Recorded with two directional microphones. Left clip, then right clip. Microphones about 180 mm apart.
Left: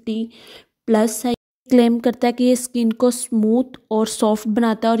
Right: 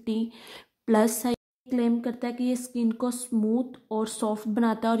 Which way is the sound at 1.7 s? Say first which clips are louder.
Left 12 dB; 55° left (ahead or behind).